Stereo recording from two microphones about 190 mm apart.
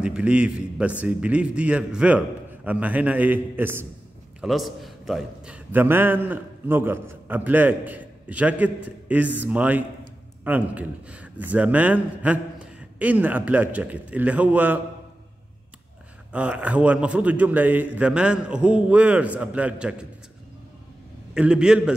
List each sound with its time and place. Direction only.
0.0 s a man's voice: 5° right (ahead or behind)
16.3 s a man's voice: 5° right (ahead or behind)
21.4 s a man's voice: 5° right (ahead or behind)